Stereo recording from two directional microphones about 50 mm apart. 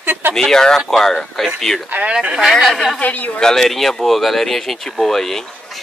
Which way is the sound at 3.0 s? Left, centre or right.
Left.